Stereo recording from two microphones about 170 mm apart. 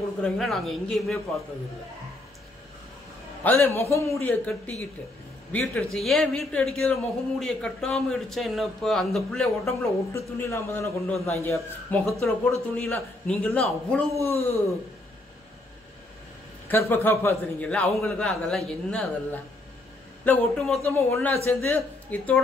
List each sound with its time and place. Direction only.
0.2 s a man's voice: centre (ahead or behind)
3.4 s a man's voice: 10° left (ahead or behind)
10.1 s a man's voice: 15° left (ahead or behind)
16.6 s a man's voice: 15° left (ahead or behind)